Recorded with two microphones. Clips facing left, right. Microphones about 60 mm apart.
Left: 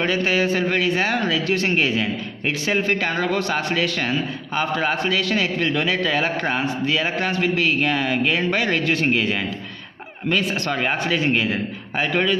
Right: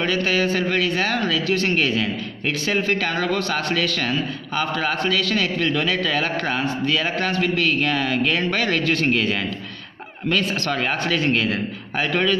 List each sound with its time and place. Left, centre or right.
0.0 s a man's voice: left
11.2 s a man's voice: centre